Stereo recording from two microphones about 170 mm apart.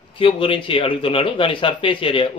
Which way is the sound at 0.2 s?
30° left (ahead or behind).